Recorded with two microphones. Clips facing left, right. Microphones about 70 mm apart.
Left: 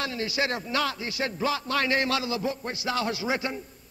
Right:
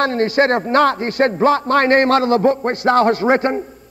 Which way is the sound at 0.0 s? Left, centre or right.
Right.